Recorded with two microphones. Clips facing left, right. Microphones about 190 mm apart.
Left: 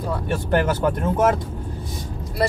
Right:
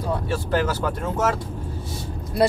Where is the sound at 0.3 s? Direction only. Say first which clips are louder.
Left 3 dB; 55° left (ahead or behind).